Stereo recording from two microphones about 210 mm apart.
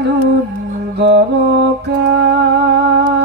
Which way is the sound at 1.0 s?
55° right (ahead or behind).